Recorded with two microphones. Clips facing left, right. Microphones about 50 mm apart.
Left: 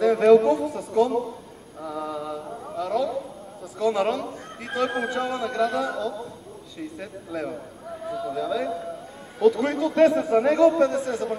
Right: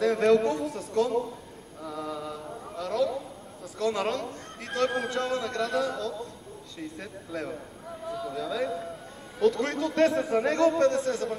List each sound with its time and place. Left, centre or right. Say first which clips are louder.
0.0 s a man's voice: left 6 dB; centre
1.8 s a sound: left 4 dB; centre
3.7 s a man's voice: left 5 dB; centre